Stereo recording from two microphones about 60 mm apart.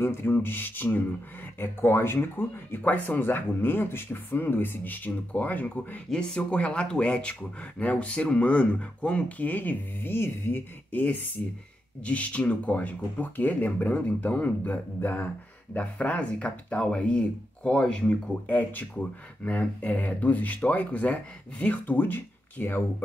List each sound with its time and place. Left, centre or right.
0.0 s speech: left
1.6 s speech: left
6.1 s speech: centre
15.7 s speech: left
18.5 s speech: left